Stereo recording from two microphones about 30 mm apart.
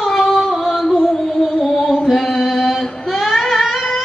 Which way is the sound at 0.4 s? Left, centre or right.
Centre.